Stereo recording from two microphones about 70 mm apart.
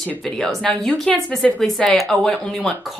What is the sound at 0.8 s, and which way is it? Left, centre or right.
Speech, centre.